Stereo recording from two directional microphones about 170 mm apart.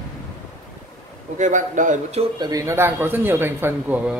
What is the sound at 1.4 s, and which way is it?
Speech, 45° right (ahead or behind).